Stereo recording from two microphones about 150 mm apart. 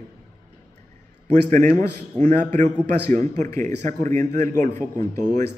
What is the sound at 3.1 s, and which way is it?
Speech, 55° right (ahead or behind).